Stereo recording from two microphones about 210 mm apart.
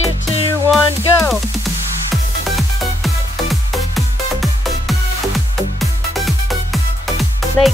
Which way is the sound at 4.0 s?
Centre (ahead or behind).